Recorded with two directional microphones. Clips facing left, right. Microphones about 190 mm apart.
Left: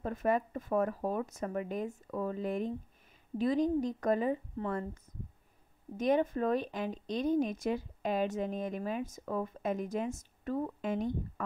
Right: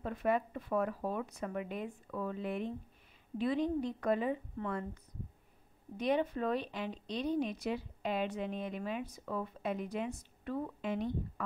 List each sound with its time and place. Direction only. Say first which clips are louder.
0.0 s speech: left 2 dB; 45° left (ahead or behind)
5.9 s speech: left 3 dB; 45° left (ahead or behind)